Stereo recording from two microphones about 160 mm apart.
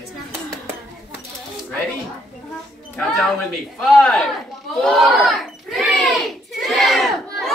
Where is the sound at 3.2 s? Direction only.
5° left (ahead or behind).